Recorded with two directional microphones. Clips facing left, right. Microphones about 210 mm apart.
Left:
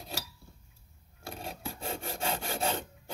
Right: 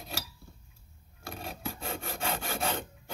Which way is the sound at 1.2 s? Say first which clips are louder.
Right 1 dB; 30° left (ahead or behind).